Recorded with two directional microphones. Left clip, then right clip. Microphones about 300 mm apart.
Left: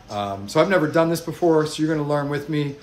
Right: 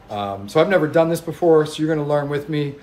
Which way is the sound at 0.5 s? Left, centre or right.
Centre.